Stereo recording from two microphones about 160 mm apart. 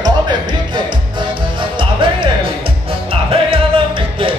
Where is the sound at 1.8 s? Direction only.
30° right (ahead or behind).